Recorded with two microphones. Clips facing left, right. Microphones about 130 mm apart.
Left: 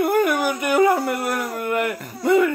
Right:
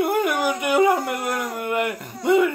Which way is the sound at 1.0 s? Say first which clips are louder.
Left 2 dB; 20° right (ahead or behind).